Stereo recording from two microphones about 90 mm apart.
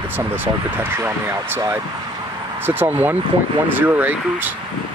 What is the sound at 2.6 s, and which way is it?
Speech, 20° right (ahead or behind).